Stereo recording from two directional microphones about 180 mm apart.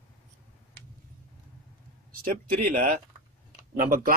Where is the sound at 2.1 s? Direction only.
50° right (ahead or behind).